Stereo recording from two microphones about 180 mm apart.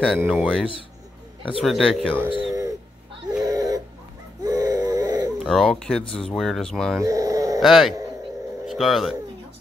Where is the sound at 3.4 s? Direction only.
20° right (ahead or behind).